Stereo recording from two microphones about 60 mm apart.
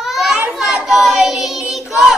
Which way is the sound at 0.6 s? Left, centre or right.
Centre.